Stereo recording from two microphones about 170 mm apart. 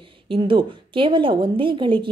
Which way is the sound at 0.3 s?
30° right (ahead or behind).